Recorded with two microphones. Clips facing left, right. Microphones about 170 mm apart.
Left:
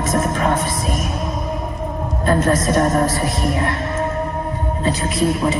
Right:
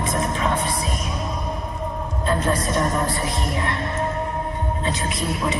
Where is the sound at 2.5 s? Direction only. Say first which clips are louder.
Left 6 dB; 45° left (ahead or behind).